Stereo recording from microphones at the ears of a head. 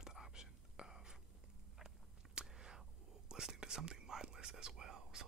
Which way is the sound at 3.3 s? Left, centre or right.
Right.